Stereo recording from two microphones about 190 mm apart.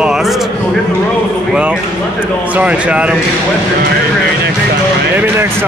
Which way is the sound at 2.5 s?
5° right (ahead or behind).